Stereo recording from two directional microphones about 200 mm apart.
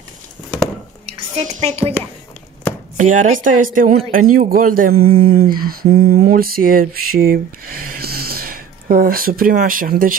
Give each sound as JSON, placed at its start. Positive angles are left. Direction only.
{"t": 1.0, "sound": "a woman's voice", "side_deg": -30}
{"t": 3.0, "sound": "speech", "side_deg": -40}
{"t": 3.7, "sound": "a sound", "side_deg": -40}